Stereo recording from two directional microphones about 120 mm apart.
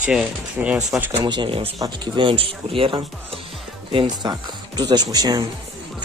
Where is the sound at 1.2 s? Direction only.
40° right (ahead or behind).